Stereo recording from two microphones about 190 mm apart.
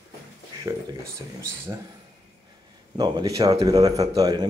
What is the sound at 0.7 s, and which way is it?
Speech, 15° right (ahead or behind).